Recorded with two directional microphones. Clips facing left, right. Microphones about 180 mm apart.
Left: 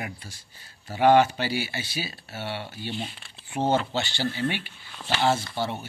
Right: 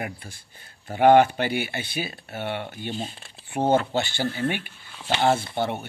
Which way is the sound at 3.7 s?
50° right (ahead or behind).